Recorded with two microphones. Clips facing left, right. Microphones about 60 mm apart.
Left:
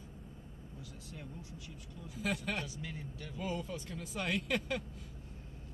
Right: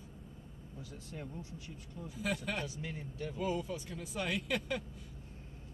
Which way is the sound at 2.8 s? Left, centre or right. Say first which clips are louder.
Right 3 dB; right.